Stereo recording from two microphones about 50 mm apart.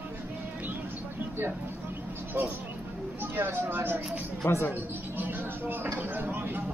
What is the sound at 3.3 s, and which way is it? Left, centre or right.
Speech, right.